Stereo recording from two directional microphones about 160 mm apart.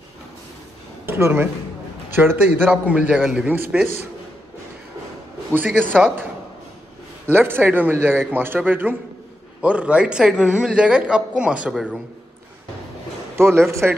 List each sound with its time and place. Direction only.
1.0 s a woman's voice: 15° right (ahead or behind)
5.5 s a woman's voice: 10° right (ahead or behind)
7.2 s a woman's voice: 15° right (ahead or behind)
13.4 s a woman's voice: 15° right (ahead or behind)